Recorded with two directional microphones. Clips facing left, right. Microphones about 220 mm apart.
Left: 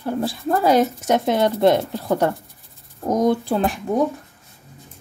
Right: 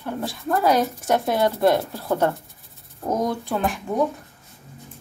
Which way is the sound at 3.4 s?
35° left (ahead or behind).